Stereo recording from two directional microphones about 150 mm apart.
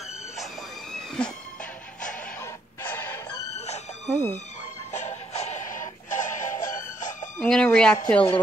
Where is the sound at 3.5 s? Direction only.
45° left (ahead or behind).